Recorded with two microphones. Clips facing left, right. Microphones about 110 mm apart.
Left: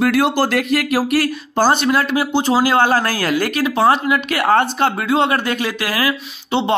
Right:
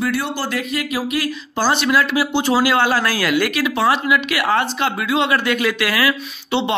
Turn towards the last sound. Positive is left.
turn(degrees=35)  # may be behind; listen again after turning